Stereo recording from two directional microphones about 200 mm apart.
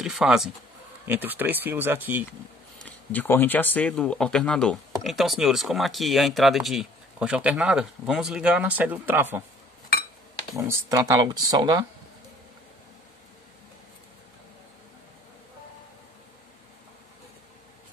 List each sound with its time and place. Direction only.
0.0 s speech: centre (ahead or behind)
2.8 s speech: 10° left (ahead or behind); by 9.4 s 10° right (ahead or behind)
10.7 s speech: 15° right (ahead or behind)